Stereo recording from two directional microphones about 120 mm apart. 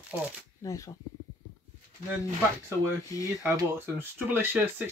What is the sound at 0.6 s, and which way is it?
Speech, 30° left (ahead or behind).